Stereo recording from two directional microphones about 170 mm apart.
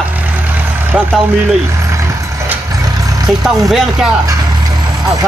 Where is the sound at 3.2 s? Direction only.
5° right (ahead or behind).